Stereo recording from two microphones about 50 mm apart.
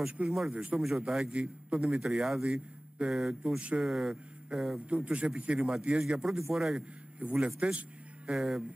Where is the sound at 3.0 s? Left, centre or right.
Centre.